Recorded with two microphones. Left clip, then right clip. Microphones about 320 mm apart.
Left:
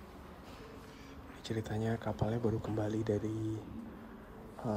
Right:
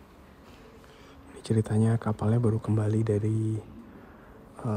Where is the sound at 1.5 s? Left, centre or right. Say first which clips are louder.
Right 9 dB; left.